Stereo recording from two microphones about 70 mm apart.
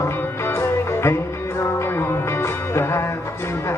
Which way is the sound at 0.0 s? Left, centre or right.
Left.